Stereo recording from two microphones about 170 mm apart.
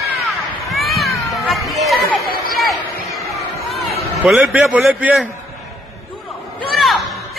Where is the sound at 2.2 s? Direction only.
60° left (ahead or behind).